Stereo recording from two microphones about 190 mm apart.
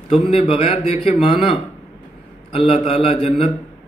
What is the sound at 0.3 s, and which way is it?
A man's voice, 30° left (ahead or behind).